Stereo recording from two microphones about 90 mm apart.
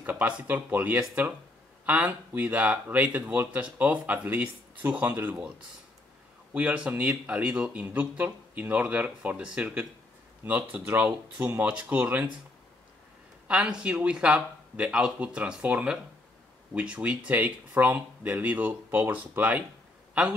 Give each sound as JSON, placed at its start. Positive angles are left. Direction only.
{"t": 0.0, "sound": "speech", "side_deg": -15}
{"t": 6.5, "sound": "speech", "side_deg": -15}
{"t": 13.5, "sound": "speech", "side_deg": -10}